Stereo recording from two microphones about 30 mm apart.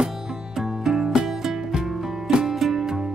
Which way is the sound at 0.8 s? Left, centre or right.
Centre.